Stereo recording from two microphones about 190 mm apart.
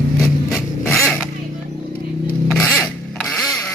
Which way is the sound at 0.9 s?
Centre (ahead or behind).